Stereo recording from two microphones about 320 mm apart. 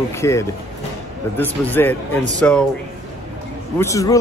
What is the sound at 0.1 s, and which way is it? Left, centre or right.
A man's voice, centre.